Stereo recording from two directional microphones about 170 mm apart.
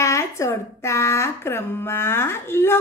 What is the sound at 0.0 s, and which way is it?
Speech, 15° left (ahead or behind).